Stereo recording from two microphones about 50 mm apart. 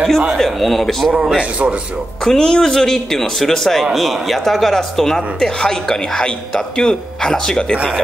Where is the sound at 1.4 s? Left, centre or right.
Right.